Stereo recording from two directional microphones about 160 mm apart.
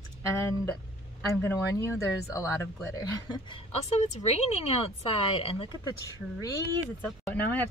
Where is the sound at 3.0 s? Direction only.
30° left (ahead or behind).